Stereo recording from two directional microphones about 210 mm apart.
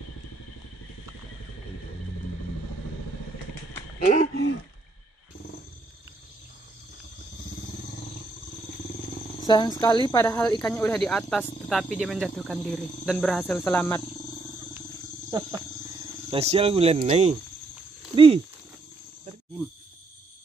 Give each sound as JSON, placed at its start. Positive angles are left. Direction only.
{"t": 4.0, "sound": "speech", "side_deg": 40}
{"t": 9.5, "sound": "speech", "side_deg": 20}
{"t": 10.6, "sound": "speech", "side_deg": 5}
{"t": 15.2, "sound": "speech", "side_deg": -15}
{"t": 16.3, "sound": "speech", "side_deg": -30}